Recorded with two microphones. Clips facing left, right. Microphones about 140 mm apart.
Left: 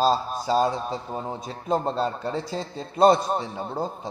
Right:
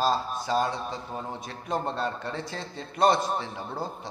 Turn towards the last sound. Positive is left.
turn(degrees=25)  # may be behind; listen again after turning